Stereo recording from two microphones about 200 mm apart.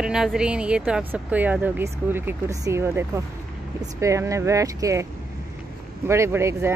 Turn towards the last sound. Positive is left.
turn(degrees=-10)  # may be behind; listen again after turning